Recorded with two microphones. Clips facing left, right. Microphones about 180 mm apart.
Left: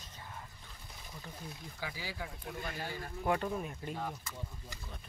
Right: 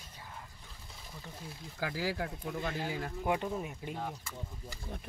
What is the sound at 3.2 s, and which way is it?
Speech, 15° right (ahead or behind).